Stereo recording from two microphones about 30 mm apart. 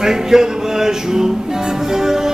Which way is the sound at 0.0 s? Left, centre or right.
Centre.